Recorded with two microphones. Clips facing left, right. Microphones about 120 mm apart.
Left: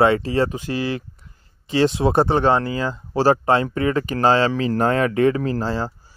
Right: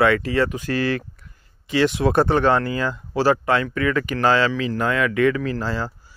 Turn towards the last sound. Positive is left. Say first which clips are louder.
# left 2 dB
turn(degrees=35)  # may be behind; listen again after turning